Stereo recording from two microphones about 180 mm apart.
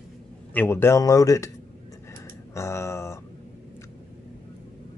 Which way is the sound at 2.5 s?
15° left (ahead or behind).